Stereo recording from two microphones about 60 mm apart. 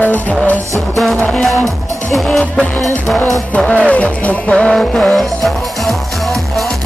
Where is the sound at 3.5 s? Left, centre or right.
Centre.